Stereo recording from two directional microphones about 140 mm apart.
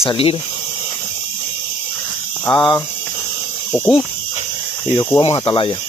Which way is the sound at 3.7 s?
5° left (ahead or behind).